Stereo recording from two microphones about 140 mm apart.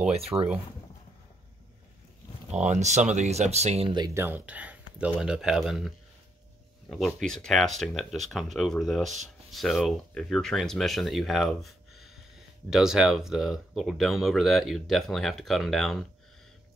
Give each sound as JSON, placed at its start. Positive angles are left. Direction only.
{"t": 0.1, "sound": "speech", "side_deg": -45}
{"t": 2.6, "sound": "speech", "side_deg": -55}
{"t": 4.1, "sound": "speech", "side_deg": -15}
{"t": 7.2, "sound": "speech", "side_deg": 5}